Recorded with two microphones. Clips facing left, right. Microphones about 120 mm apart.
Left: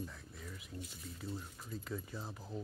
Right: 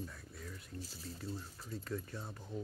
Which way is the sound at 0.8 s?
35° right (ahead or behind).